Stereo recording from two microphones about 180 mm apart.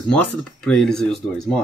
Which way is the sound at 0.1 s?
5° left (ahead or behind).